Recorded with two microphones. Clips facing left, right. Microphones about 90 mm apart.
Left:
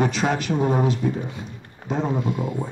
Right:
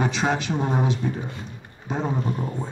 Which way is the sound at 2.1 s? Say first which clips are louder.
Left 2 dB; 10° left (ahead or behind).